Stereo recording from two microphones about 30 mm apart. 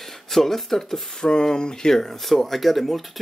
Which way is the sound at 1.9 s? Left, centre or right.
Centre.